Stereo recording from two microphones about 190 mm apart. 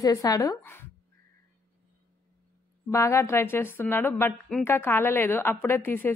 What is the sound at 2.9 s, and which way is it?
A woman's voice, 15° left (ahead or behind).